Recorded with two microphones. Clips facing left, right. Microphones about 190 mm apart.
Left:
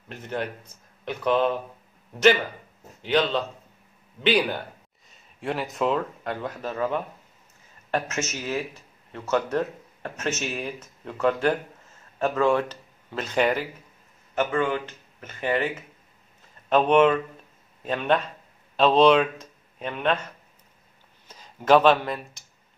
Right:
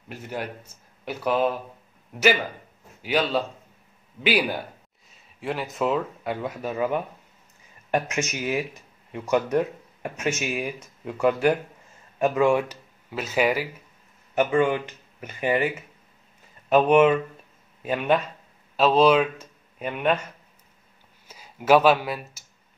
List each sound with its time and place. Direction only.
0.1 s speech: 10° right (ahead or behind)
3.0 s a man's voice: 10° right (ahead or behind)
21.3 s speech: 10° right (ahead or behind)